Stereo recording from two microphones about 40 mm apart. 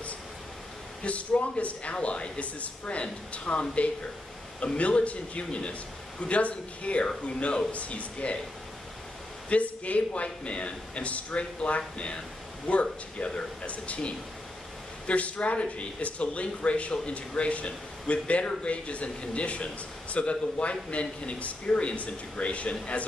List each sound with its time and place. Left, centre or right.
1.0 s speech: left
2.0 s speech: left
9.5 s speech: left